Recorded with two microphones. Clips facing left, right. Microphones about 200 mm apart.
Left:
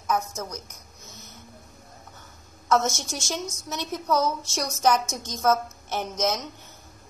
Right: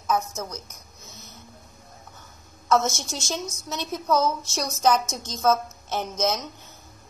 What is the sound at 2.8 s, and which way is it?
A woman's voice, 15° left (ahead or behind).